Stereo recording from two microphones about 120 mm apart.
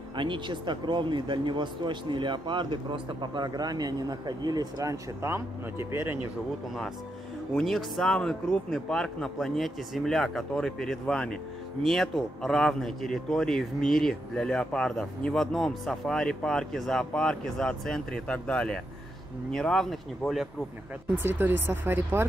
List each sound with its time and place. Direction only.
0.1 s speech: 40° right (ahead or behind); by 6.1 s 20° right (ahead or behind)
7.5 s a man's voice: 5° left (ahead or behind)
21.2 s speech: 15° right (ahead or behind)